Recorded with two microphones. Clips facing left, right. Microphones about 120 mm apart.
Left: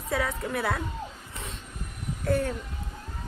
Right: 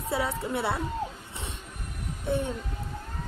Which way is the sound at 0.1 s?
25° right (ahead or behind).